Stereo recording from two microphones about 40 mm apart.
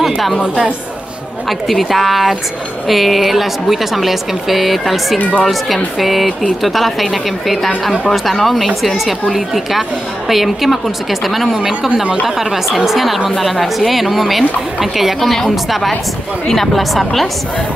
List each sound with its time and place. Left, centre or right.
0.0 s a sound: centre
1.7 s a woman's voice: centre
12.0 s speech: right
12.6 s a woman's voice: centre